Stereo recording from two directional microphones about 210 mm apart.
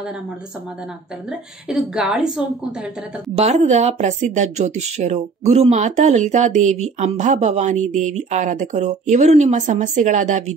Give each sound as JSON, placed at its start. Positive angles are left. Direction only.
{"t": 1.7, "sound": "a woman's voice", "side_deg": 0}
{"t": 3.3, "sound": "speech", "side_deg": -30}